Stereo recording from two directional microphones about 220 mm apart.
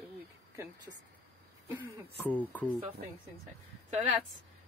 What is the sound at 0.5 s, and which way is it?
Speech, 15° right (ahead or behind).